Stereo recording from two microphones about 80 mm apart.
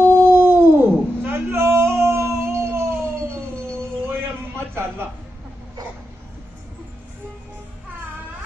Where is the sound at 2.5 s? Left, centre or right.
Right.